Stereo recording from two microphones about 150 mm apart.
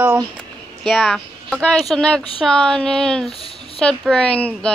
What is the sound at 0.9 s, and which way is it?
A woman's voice, centre (ahead or behind).